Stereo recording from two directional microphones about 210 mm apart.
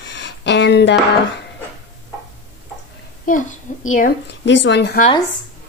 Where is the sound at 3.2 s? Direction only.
40° left (ahead or behind).